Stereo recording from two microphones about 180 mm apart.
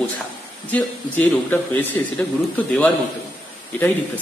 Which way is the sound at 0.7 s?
10° left (ahead or behind).